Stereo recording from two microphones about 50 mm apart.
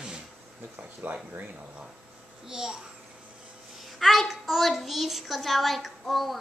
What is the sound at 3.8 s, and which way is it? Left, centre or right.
A child's voice, centre.